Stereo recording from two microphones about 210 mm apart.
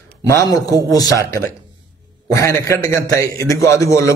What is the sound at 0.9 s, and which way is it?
A man's voice, 15° left (ahead or behind).